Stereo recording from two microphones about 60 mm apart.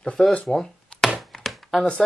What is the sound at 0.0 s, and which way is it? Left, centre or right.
Speech, centre.